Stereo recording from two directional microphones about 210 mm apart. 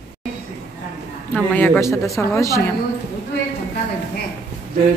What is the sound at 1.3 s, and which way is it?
A woman's voice, 5° left (ahead or behind).